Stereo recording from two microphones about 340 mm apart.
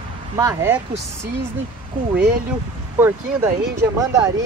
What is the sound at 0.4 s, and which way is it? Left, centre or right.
Speech, centre.